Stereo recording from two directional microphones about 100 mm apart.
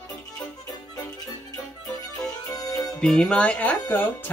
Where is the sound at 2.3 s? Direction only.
40° left (ahead or behind).